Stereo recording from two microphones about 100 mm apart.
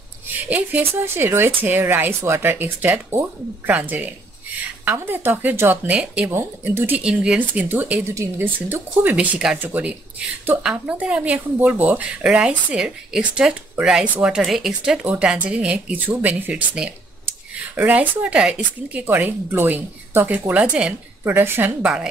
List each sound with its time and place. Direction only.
0.5 s speech: 20° right (ahead or behind)
6.3 s speech: 25° right (ahead or behind)
7.0 s speech: 10° right (ahead or behind)
21.8 s speech: 10° right (ahead or behind)